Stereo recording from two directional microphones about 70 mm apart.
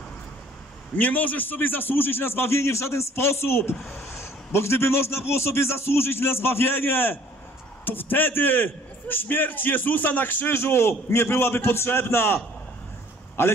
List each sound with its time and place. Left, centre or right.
0.9 s a man's voice: left